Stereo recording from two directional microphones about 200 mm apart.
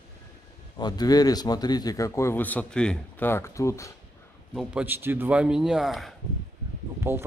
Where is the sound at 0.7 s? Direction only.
20° left (ahead or behind).